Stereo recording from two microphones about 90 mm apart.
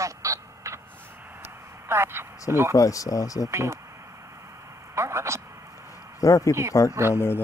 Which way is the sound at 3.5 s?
35° right (ahead or behind).